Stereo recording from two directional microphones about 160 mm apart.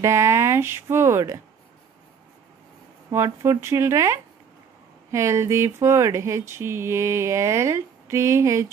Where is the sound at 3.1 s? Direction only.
20° right (ahead or behind).